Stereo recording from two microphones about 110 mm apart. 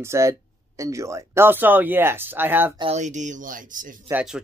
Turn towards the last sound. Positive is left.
turn(degrees=-25)  # may be behind; listen again after turning